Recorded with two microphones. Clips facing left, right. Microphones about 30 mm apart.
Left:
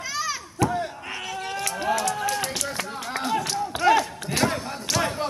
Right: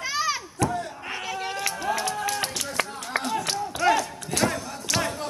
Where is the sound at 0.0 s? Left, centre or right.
Centre.